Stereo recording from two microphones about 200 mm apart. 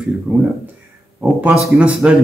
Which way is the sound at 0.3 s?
Centre (ahead or behind).